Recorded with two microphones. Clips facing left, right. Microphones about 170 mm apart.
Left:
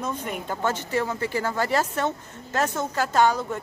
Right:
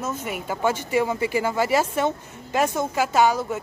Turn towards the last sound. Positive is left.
turn(degrees=-10)  # may be behind; listen again after turning